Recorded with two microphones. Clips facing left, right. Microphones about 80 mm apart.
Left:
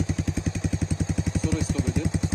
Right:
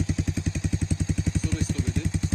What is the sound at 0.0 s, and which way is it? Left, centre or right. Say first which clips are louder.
Vehicle: left 1 dB; centre.